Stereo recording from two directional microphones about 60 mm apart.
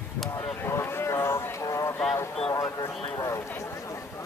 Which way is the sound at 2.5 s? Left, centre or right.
Left.